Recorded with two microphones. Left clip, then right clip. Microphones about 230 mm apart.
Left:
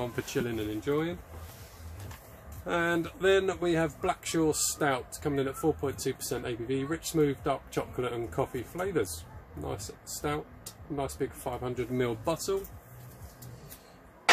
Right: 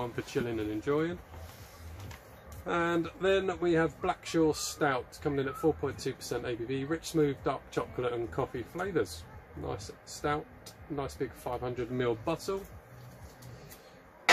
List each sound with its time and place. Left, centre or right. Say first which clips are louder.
0.0 s speech: left 1 dB; centre
2.6 s speech: left 1 dB; centre
10.2 s speech: right 1 dB; centre